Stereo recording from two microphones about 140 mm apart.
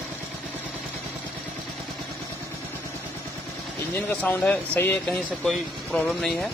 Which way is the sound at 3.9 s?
10° left (ahead or behind).